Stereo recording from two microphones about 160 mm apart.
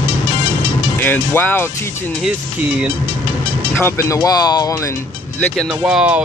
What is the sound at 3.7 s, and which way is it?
Speech, 15° left (ahead or behind).